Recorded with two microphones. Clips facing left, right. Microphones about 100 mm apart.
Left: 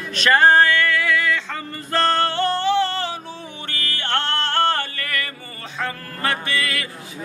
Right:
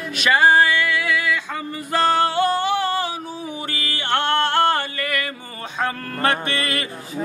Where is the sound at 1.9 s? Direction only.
15° right (ahead or behind).